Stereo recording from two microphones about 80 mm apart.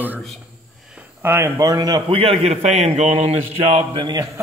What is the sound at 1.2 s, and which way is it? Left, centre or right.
Speech, right.